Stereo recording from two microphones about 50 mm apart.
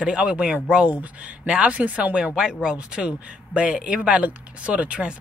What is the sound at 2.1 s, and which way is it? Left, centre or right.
Speech, centre.